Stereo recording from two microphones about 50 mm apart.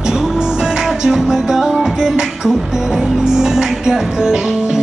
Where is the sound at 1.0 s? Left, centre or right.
Centre.